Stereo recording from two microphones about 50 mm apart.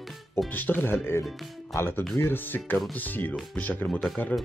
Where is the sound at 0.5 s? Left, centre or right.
Left.